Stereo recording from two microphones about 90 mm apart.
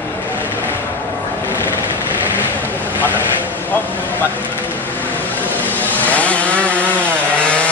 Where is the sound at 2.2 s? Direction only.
20° right (ahead or behind).